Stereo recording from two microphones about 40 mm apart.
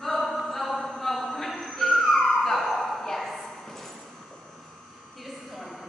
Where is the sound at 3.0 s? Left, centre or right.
Centre.